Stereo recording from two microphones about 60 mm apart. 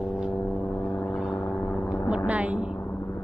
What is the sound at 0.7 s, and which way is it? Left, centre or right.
Vehicle, centre.